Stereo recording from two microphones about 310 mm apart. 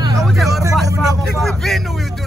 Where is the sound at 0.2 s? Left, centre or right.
Centre.